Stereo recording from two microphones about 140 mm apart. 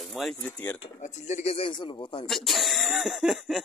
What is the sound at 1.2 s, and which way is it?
Speech, 50° left (ahead or behind).